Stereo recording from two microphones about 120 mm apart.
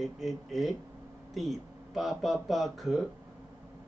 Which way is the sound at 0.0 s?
Centre (ahead or behind).